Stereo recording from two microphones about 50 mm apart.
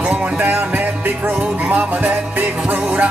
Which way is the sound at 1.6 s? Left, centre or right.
Right.